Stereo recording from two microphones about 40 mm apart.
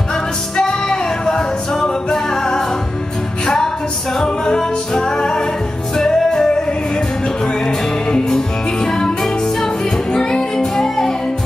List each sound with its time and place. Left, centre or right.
0.1 s music: centre